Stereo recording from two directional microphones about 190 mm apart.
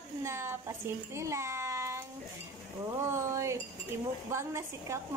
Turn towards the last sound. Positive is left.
turn(degrees=-15)  # may be behind; listen again after turning